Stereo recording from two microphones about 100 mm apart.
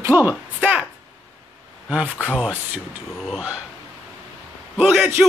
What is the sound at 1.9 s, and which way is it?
Speech, 10° right (ahead or behind).